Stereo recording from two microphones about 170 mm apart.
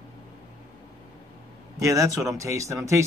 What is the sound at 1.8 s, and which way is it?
Speech, 20° right (ahead or behind).